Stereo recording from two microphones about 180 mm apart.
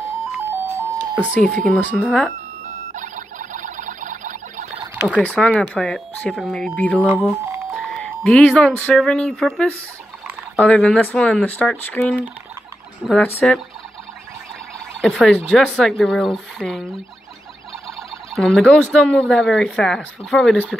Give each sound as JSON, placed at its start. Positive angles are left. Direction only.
{"t": 0.5, "sound": "music", "side_deg": -15}
{"t": 1.4, "sound": "speech", "side_deg": 5}
{"t": 2.6, "sound": "a sound", "side_deg": -45}
{"t": 4.9, "sound": "a sound", "side_deg": -5}
{"t": 5.2, "sound": "speech", "side_deg": 5}
{"t": 7.0, "sound": "speech", "side_deg": -10}
{"t": 7.7, "sound": "speech", "side_deg": 0}
{"t": 15.0, "sound": "speech", "side_deg": 0}
{"t": 18.3, "sound": "speech", "side_deg": 0}